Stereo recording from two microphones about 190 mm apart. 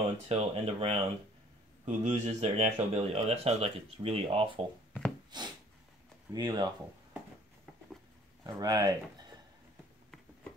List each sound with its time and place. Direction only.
0.3 s speech: 30° right (ahead or behind)
5.3 s a sound: 20° right (ahead or behind)
6.3 s speech: 25° right (ahead or behind)
8.5 s speech: 20° right (ahead or behind)